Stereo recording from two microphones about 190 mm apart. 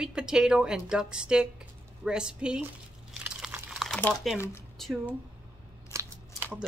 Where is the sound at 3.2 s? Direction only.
5° right (ahead or behind).